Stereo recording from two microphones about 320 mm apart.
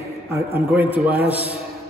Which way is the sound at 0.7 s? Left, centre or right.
Centre.